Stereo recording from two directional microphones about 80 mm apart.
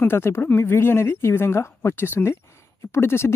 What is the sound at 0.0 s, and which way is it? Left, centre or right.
Speech, left.